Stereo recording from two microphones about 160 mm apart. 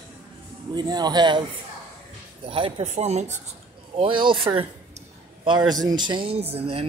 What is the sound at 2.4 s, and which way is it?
Speech, 35° right (ahead or behind).